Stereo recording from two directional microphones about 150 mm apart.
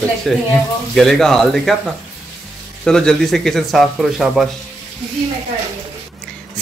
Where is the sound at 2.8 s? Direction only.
5° left (ahead or behind).